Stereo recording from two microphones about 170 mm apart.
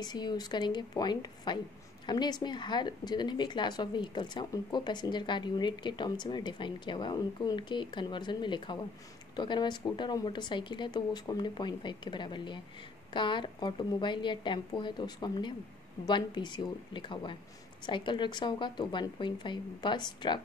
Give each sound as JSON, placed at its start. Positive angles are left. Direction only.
{"t": 0.0, "sound": "speech", "side_deg": 25}